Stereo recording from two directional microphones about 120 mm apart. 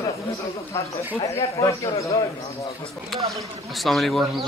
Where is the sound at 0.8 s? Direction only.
20° left (ahead or behind).